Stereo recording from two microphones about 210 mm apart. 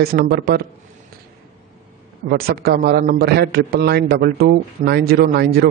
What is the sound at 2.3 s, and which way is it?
A man's voice, 45° right (ahead or behind).